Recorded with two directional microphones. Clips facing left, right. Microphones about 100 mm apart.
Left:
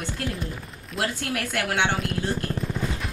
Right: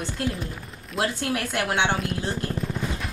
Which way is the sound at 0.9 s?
25° right (ahead or behind).